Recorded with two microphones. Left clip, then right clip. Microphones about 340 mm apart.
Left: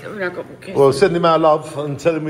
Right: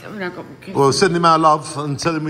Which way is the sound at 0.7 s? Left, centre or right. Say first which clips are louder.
Left 2 dB; centre.